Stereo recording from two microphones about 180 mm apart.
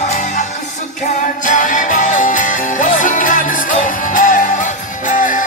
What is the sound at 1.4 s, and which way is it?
Music, 45° left (ahead or behind).